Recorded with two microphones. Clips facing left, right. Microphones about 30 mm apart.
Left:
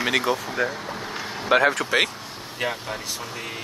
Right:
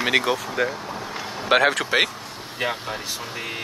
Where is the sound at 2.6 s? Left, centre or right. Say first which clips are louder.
Right 1 dB; centre.